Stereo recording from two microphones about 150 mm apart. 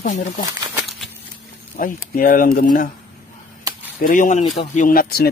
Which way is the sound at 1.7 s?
65° left (ahead or behind).